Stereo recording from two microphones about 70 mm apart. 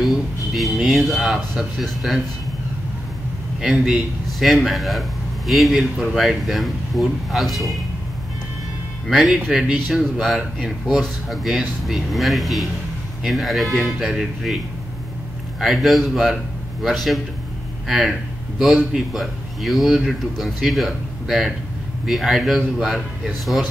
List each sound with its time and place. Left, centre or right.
0.0 s speech: centre
3.6 s speech: centre
9.0 s speech: centre
15.6 s speech: centre